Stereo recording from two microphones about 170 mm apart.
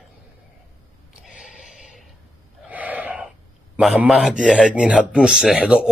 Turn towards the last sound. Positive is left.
turn(degrees=-5)  # may be behind; listen again after turning